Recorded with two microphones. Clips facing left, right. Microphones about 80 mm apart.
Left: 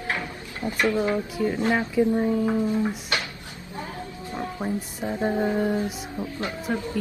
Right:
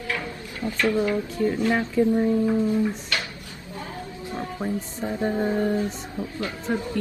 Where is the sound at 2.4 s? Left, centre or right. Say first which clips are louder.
Right 2 dB; left.